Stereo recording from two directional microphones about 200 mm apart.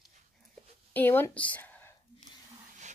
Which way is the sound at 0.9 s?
10° left (ahead or behind).